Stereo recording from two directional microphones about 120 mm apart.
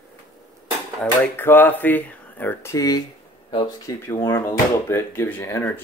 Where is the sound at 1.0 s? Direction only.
15° left (ahead or behind).